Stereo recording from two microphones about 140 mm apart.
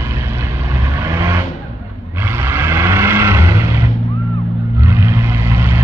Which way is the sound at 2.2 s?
15° right (ahead or behind).